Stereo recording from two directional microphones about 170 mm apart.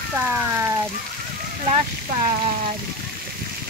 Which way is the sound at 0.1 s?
15° right (ahead or behind).